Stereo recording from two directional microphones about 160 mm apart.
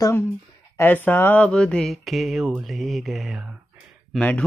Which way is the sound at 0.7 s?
10° left (ahead or behind).